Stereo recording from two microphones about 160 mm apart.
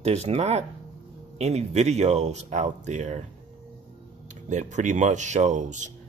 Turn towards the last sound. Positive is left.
turn(degrees=-50)  # may be behind; listen again after turning